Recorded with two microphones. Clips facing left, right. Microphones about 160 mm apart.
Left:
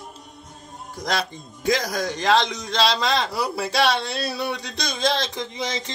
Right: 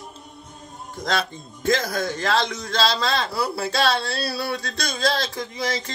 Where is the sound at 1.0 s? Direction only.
15° left (ahead or behind).